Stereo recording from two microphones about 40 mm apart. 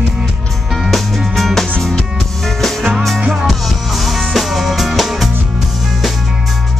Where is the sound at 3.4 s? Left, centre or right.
Centre.